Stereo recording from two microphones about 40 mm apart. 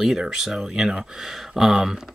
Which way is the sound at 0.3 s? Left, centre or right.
Centre.